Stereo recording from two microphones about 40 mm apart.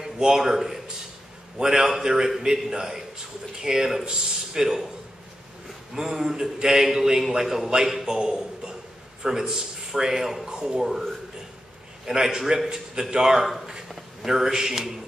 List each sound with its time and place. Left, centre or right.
0.0 s a man's voice: centre
5.9 s a man's voice: centre
10.5 s speech: centre
12.1 s a man's voice: centre